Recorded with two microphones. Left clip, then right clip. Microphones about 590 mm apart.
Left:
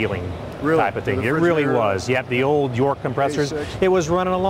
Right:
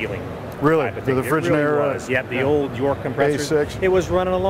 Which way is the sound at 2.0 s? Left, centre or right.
Left.